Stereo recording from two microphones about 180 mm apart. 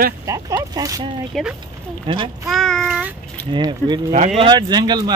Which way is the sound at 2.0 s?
30° right (ahead or behind).